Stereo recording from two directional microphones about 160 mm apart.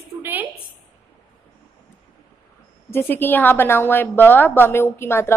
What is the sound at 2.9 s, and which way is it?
A woman's voice, 15° left (ahead or behind).